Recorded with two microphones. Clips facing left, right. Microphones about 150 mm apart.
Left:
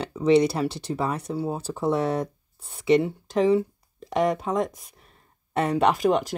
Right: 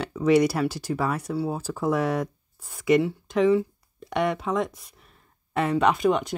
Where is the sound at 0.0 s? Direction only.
30° left (ahead or behind).